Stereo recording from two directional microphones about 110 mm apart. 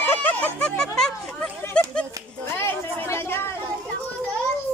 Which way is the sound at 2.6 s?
25° left (ahead or behind).